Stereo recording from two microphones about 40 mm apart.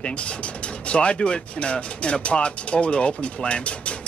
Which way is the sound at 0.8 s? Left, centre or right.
Left.